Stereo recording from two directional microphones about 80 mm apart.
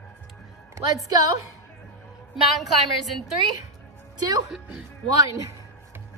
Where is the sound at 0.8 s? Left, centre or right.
Right.